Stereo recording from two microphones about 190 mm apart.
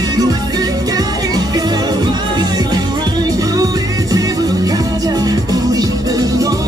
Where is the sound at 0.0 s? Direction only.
20° right (ahead or behind).